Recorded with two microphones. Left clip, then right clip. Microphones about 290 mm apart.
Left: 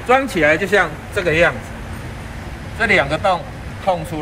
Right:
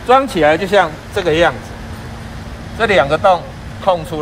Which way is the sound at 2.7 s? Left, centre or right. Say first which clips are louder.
Right 3 dB; right.